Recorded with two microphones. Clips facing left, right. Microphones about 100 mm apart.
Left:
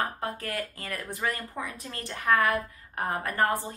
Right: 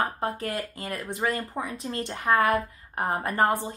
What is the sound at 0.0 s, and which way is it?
Speech, 20° right (ahead or behind).